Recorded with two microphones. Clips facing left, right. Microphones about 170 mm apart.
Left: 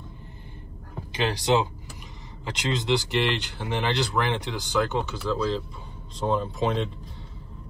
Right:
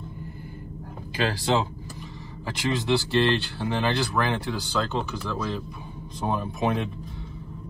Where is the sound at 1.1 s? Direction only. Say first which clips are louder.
Left 1 dB; 20° left (ahead or behind).